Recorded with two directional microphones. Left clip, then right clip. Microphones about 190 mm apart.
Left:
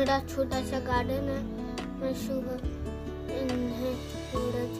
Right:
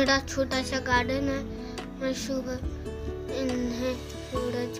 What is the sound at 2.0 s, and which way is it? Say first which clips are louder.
Music: right 3 dB; 15° right (ahead or behind).